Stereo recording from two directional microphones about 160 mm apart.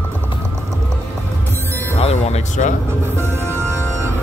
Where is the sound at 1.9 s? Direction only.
40° left (ahead or behind).